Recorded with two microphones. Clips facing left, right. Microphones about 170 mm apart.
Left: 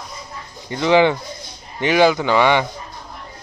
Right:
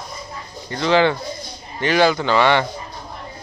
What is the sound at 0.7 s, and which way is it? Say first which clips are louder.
Speech: left 2 dB; 15° left (ahead or behind).